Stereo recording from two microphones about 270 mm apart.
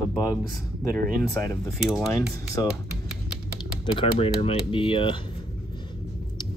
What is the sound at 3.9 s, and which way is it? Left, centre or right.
Speech, left.